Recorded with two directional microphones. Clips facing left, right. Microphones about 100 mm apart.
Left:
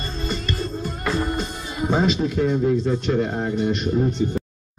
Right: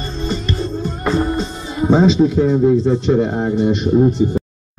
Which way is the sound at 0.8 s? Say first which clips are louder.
Right 7 dB; 30° right (ahead or behind).